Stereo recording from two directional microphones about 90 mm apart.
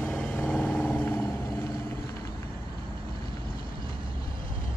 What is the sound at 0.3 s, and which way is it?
Vehicle, 20° left (ahead or behind).